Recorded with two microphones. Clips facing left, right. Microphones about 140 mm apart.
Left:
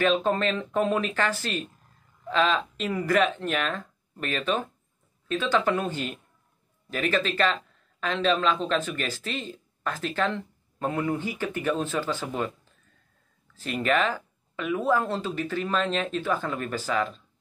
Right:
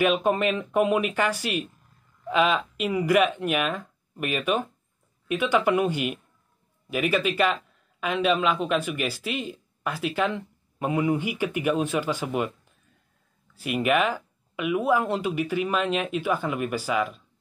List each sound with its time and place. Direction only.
0.0 s speech: 15° right (ahead or behind)
13.6 s speech: 10° right (ahead or behind)